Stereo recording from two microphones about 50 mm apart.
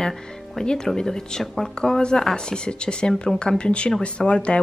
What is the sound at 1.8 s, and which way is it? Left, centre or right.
A woman's voice, centre.